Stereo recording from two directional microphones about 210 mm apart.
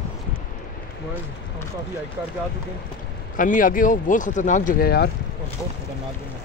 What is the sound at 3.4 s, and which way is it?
Speech, 40° left (ahead or behind).